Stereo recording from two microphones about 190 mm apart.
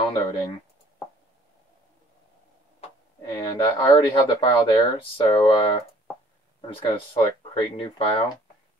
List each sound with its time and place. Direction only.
0.0 s speech: 20° left (ahead or behind)
3.3 s speech: 25° left (ahead or behind)